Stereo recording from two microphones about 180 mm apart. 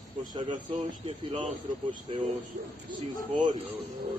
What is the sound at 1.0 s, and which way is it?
Speech, 25° right (ahead or behind).